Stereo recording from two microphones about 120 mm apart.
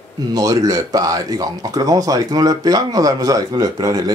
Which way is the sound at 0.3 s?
30° right (ahead or behind).